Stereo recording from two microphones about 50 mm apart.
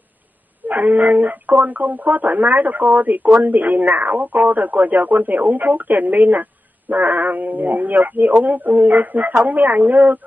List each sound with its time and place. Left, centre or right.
0.7 s speech: right